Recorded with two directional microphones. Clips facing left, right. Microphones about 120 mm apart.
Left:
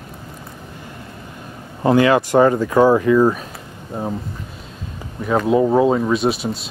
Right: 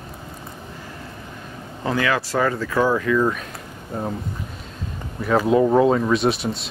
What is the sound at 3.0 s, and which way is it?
Speech, 25° left (ahead or behind).